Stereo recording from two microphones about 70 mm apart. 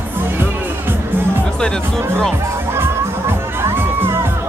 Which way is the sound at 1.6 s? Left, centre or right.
Centre.